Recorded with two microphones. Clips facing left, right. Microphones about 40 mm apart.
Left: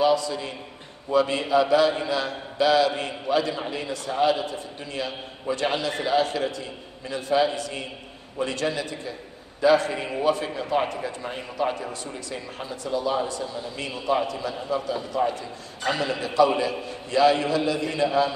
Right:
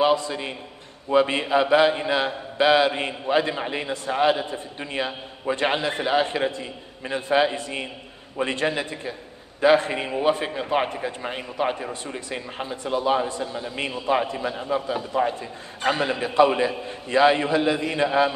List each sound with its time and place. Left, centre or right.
0.0 s a man's voice: right